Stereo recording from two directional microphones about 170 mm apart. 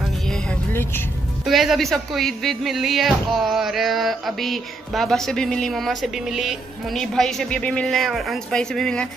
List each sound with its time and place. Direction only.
1.4 s speech: centre (ahead or behind)